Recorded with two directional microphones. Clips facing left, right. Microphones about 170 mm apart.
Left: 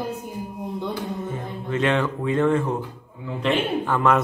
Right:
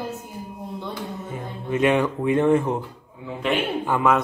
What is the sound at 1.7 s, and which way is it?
Speech, 15° right (ahead or behind).